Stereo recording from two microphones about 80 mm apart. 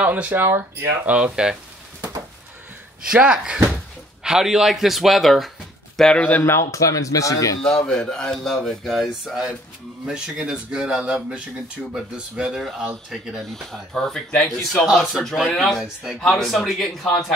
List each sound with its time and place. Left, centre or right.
0.0 s speech: right
3.1 s speech: centre
6.4 s speech: left
7.6 s speech: centre
9.3 s speech: centre
14.9 s speech: centre